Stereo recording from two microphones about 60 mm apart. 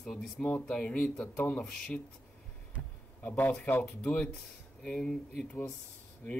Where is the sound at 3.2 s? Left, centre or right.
Left.